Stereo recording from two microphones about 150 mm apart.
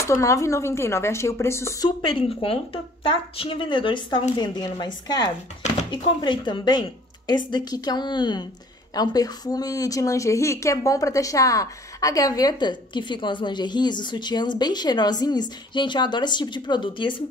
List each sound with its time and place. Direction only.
0.0 s a woman's voice: 20° left (ahead or behind)
2.0 s a woman's voice: 35° left (ahead or behind)